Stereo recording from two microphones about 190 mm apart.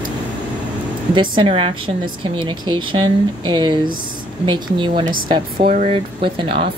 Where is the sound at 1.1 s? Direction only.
25° right (ahead or behind).